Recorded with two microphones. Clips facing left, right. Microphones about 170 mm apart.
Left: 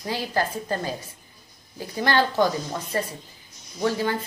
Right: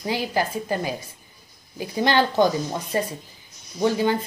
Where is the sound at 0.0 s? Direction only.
15° right (ahead or behind).